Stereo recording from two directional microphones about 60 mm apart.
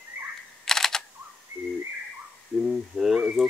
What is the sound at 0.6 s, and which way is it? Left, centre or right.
Computer keyboard, centre.